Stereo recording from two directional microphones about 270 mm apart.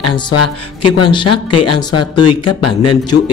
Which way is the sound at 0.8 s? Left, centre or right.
Centre.